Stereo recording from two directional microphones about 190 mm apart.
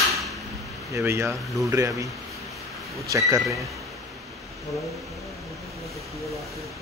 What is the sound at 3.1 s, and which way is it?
Speech, 15° right (ahead or behind).